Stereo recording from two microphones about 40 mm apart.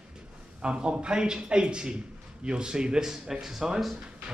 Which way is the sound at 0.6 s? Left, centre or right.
Right.